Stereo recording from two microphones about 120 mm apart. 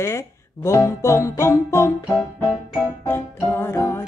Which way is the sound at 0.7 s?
25° left (ahead or behind).